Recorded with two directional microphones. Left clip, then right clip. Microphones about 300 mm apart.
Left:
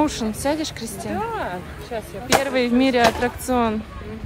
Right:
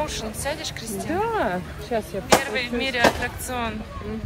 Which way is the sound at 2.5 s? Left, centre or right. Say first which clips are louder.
Left 6 dB; centre.